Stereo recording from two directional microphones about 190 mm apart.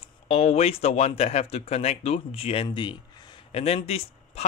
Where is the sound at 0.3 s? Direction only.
35° left (ahead or behind).